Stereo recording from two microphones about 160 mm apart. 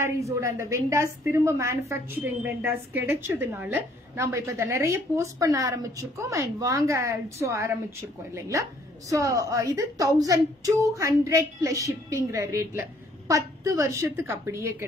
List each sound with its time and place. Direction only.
0.0 s a woman's voice: 20° right (ahead or behind)